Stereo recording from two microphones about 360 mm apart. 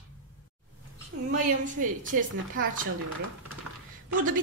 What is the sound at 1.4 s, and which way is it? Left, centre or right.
A woman's voice, right.